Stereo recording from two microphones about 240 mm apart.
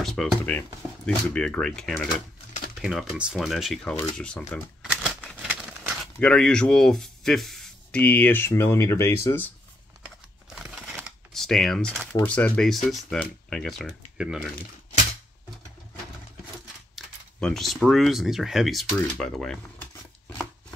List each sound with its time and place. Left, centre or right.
0.0 s speech: centre
5.2 s a sound: centre
6.1 s speech: centre
10.5 s typing: centre
12.2 s speech: centre
16.9 s speech: centre